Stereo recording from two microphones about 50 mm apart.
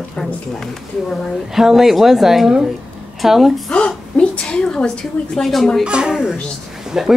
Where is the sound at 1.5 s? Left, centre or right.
Centre.